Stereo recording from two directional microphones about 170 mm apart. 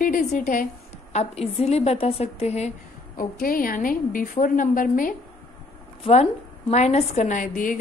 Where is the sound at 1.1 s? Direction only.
35° left (ahead or behind).